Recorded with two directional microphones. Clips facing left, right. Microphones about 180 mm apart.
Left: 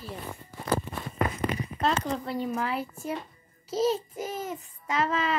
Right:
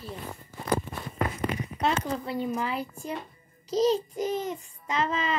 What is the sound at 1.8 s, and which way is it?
Speech, 10° right (ahead or behind).